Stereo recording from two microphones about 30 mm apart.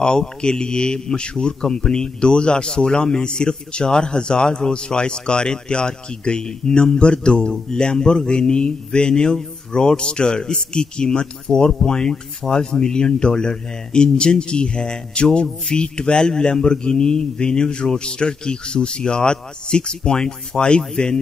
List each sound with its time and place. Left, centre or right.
0.0 s speech: left